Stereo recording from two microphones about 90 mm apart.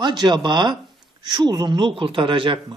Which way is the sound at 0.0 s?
55° right (ahead or behind).